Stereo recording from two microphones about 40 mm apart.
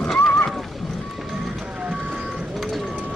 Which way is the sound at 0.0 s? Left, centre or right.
Centre.